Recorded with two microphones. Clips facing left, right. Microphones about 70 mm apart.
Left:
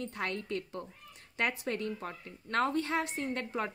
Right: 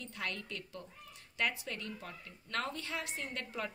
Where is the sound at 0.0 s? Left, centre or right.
Left.